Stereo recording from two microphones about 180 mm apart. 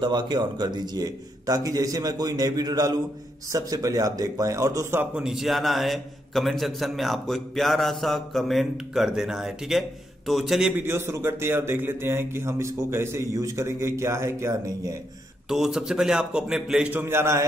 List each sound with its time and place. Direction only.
0.0 s a man's voice: 25° right (ahead or behind)
5.1 s a man's voice: 5° right (ahead or behind)
15.4 s a man's voice: 5° right (ahead or behind)